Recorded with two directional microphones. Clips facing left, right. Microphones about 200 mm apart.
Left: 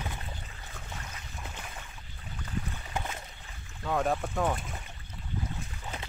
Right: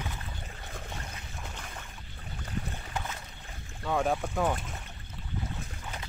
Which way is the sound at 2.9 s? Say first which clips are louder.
Left 2 dB; 20° left (ahead or behind).